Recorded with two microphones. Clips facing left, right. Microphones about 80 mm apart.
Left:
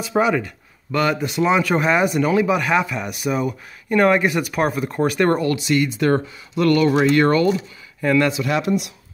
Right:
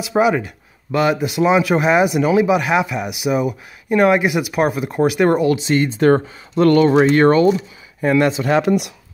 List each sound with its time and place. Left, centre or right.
0.1 s speech: centre
5.6 s speech: right
8.6 s speech: right